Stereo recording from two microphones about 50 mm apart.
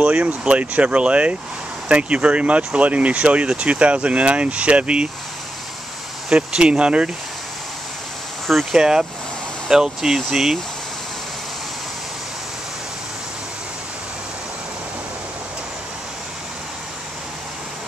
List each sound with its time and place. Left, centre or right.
0.0 s speech: right
6.2 s speech: centre
8.7 s speech: centre